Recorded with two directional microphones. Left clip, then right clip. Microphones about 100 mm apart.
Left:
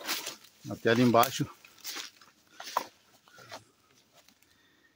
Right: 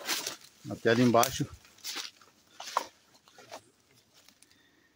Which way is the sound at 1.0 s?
50° left (ahead or behind).